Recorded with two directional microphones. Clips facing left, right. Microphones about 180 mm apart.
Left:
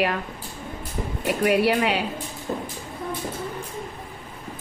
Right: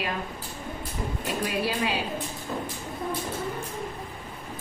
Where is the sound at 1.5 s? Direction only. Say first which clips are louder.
Left 9 dB; 65° left (ahead or behind).